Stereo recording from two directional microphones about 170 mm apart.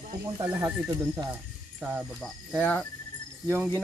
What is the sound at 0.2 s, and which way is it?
Speech, 15° right (ahead or behind).